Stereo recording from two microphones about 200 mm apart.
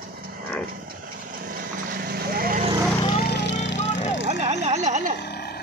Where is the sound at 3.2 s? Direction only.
55° left (ahead or behind).